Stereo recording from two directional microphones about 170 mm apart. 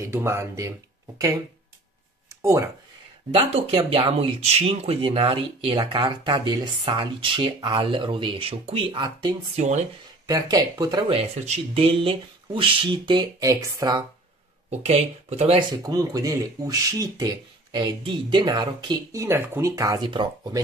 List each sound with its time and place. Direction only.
0.0 s speech: 15° right (ahead or behind)
3.3 s speech: 35° right (ahead or behind)
9.6 s speech: 45° right (ahead or behind)
10.2 s speech: 20° right (ahead or behind)
11.1 s speech: 40° right (ahead or behind); by 14.0 s 20° right (ahead or behind)
14.7 s speech: 40° right (ahead or behind)
15.8 s speech: 20° right (ahead or behind)
19.2 s speech: 15° right (ahead or behind)